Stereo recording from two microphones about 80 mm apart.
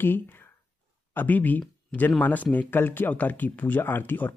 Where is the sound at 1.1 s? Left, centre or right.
Left.